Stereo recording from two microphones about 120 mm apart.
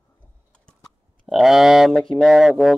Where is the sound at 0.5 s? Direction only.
5° left (ahead or behind).